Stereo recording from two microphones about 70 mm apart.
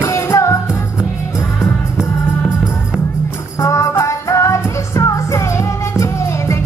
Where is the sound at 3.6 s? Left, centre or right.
Left.